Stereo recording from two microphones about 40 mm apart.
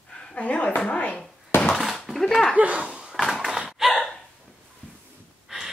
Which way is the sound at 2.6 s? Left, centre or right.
Right.